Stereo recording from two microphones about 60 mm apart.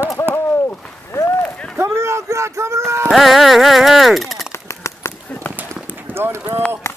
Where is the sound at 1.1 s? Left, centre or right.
Left.